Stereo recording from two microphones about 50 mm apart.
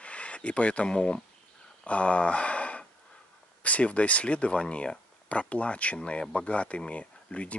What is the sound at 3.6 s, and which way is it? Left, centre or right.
Speech, left.